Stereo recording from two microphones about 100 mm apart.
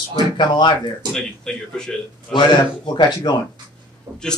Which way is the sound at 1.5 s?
5° left (ahead or behind).